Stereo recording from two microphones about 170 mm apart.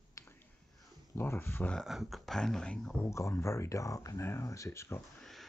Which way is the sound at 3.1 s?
15° left (ahead or behind).